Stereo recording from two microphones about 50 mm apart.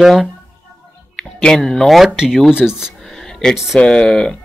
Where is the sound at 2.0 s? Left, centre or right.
Centre.